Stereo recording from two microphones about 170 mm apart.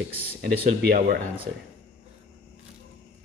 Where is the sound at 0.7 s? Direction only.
55° right (ahead or behind).